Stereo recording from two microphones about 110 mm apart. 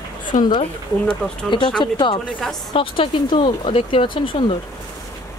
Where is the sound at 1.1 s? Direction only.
45° left (ahead or behind).